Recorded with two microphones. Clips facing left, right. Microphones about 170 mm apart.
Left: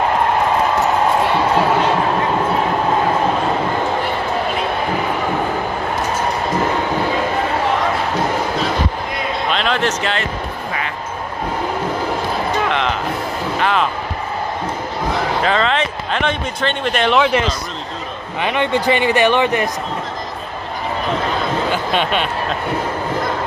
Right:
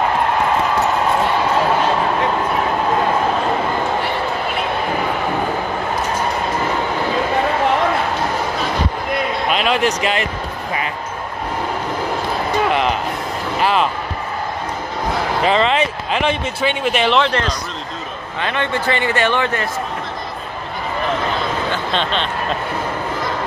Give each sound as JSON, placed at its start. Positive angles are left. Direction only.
{"t": 9.5, "sound": "speech", "side_deg": -5}
{"t": 12.6, "sound": "music", "side_deg": -10}
{"t": 13.6, "sound": "speech", "side_deg": -5}
{"t": 15.4, "sound": "speech", "side_deg": -5}
{"t": 17.2, "sound": "a man's voice", "side_deg": 10}
{"t": 21.9, "sound": "a man's voice", "side_deg": 10}